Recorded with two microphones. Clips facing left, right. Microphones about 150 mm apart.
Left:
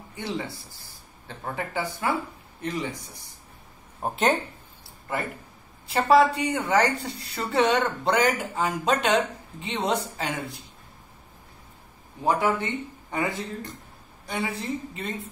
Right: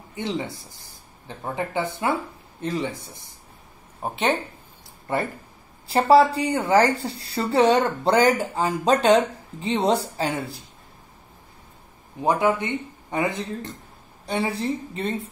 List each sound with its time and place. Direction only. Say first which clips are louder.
0.1 s speech: right 4 dB; 20° right (ahead or behind)
4.0 s speech: even; centre (ahead or behind)
5.9 s a woman's voice: right 3 dB; 35° right (ahead or behind)
12.2 s a woman's voice: right 3 dB; 20° right (ahead or behind)